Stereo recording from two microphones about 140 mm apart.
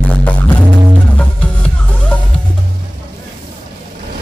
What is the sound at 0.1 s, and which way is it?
Music, 10° left (ahead or behind).